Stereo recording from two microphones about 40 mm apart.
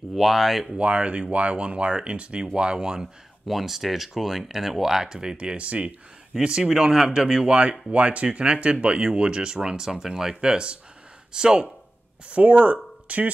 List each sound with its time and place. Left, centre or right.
0.1 s speech: centre
0.7 s speech: right
3.4 s speech: centre; by 5.9 s right
6.3 s speech: centre
12.3 s speech: right